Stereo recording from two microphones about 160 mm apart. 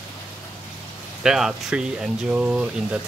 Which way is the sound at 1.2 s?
5° right (ahead or behind).